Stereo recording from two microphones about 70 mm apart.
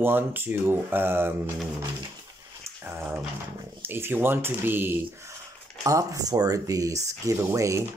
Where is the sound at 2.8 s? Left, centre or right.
Right.